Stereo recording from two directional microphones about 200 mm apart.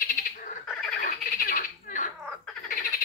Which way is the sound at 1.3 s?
45° left (ahead or behind).